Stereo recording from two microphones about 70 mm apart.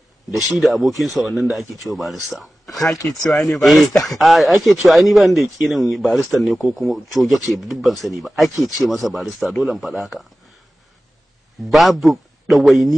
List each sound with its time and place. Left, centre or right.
0.3 s speech: centre
2.9 s speech: left
3.3 s speech: centre
11.7 s a man's voice: centre